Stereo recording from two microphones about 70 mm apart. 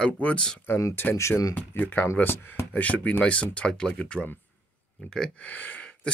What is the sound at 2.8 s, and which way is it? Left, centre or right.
Speech, left.